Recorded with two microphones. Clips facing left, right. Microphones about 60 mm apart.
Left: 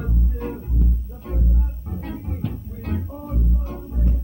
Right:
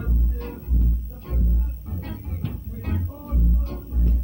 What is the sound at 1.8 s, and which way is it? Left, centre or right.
Music, centre.